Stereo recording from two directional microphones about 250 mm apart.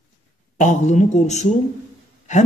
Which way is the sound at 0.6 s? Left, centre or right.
Left.